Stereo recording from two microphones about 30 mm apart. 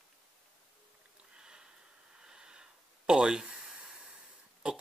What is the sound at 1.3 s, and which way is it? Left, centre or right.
Sniff, right.